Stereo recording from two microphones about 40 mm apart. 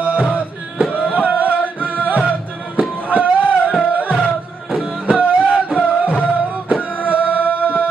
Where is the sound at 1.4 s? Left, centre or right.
Right.